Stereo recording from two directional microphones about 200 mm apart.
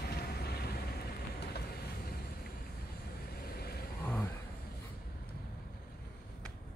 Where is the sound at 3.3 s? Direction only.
50° left (ahead or behind).